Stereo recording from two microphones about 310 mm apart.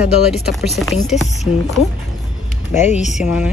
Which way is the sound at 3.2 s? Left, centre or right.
Centre.